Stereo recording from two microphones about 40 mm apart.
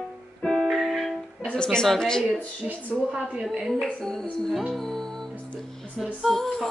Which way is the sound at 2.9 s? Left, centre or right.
Centre.